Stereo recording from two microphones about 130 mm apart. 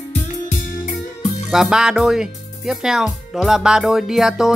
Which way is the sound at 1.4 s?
5° right (ahead or behind).